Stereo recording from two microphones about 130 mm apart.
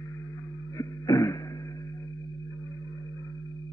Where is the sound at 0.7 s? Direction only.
25° left (ahead or behind).